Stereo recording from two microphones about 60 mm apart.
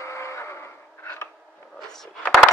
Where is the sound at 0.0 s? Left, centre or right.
Left.